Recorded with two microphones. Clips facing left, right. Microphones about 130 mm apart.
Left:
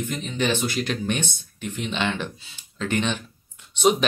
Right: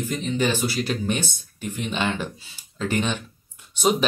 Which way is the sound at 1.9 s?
10° right (ahead or behind).